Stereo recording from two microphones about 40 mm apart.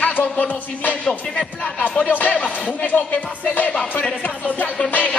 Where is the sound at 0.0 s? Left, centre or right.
Left.